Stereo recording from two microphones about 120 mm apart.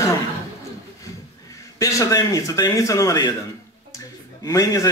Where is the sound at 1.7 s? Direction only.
30° left (ahead or behind).